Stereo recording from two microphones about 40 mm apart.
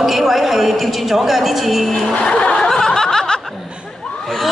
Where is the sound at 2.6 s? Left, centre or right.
Centre.